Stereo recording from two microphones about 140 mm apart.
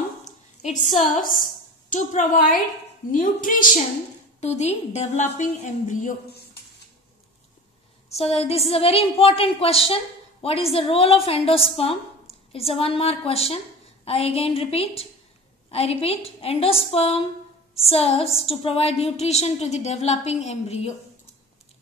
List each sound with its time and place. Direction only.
1.1 s a woman's voice: 75° left (ahead or behind)
4.4 s a woman's voice: 50° left (ahead or behind)
8.2 s a woman's voice: 45° left (ahead or behind)